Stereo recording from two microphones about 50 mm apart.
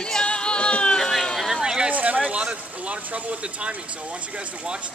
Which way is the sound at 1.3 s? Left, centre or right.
Centre.